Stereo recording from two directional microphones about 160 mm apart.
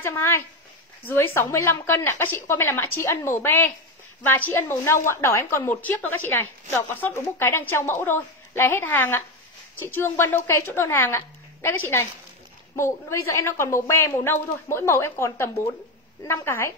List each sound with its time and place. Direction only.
0.0 s a woman's voice: 15° left (ahead or behind)